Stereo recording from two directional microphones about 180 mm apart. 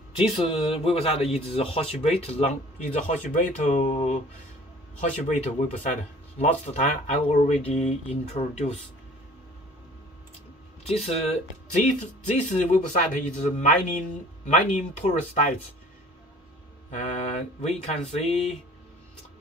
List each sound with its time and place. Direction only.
0.2 s speech: 30° left (ahead or behind)
5.3 s speech: 40° left (ahead or behind)
10.9 s speech: 35° left (ahead or behind)
16.9 s speech: 40° left (ahead or behind)